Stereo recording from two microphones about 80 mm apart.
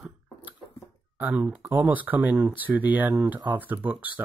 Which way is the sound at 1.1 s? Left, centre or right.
Right.